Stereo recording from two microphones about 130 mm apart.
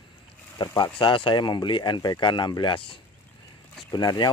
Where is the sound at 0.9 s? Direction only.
40° left (ahead or behind).